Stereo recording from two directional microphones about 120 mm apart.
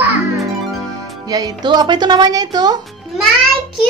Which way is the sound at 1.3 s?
35° right (ahead or behind).